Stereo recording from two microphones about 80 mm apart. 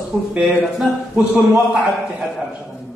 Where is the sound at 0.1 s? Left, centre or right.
Centre.